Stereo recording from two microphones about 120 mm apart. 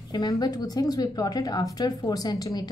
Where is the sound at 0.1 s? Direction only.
35° left (ahead or behind).